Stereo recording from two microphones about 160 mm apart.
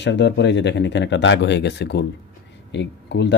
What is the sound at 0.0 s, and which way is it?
Speech, 90° left.